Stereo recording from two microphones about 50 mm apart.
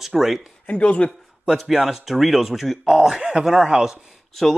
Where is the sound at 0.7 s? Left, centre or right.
Left.